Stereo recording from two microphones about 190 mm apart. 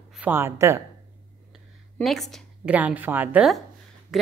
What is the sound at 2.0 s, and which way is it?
A woman's voice, centre (ahead or behind).